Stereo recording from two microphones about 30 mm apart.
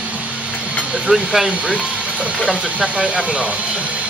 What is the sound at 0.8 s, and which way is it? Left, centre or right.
Speech, right.